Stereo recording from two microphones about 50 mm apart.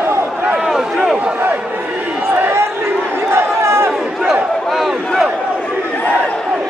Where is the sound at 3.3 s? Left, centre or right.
Right.